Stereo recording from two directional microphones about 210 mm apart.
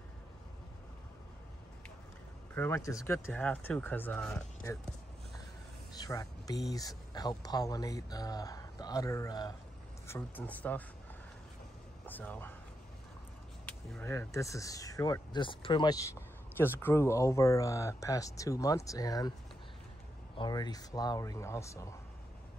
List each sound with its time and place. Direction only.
2.5 s speech: 10° left (ahead or behind)
5.9 s speech: 15° left (ahead or behind)
12.1 s speech: 10° left (ahead or behind)
13.7 s speech: 10° left (ahead or behind)
20.3 s speech: 20° left (ahead or behind)